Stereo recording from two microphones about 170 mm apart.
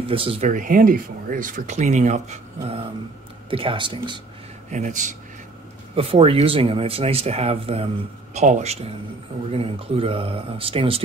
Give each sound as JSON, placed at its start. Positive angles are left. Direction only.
{"t": 0.1, "sound": "speech", "side_deg": -35}
{"t": 0.5, "sound": "speech", "side_deg": -50}
{"t": 4.6, "sound": "speech", "side_deg": -45}
{"t": 5.9, "sound": "speech", "side_deg": -35}